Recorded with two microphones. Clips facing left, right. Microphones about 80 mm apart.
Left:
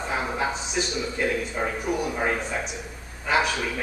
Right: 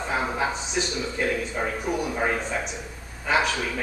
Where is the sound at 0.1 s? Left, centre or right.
Centre.